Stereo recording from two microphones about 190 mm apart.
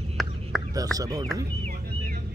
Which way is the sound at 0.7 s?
20° right (ahead or behind).